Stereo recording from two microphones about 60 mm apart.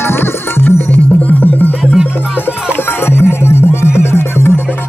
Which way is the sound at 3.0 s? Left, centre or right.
Left.